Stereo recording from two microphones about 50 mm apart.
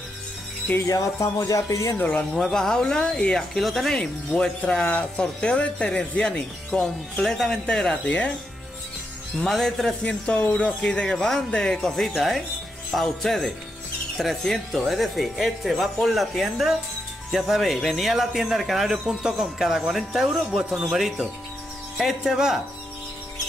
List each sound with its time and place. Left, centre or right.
0.7 s speech: left
1.2 s speech: left
2.3 s speech: centre
3.5 s speech: centre
3.9 s speech: centre
7.9 s speech: left
9.4 s speech: centre
12.2 s speech: centre
19.0 s speech: centre
19.6 s speech: centre